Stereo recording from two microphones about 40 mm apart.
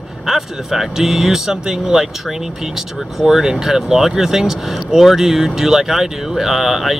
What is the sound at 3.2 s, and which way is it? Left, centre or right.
Speech, centre.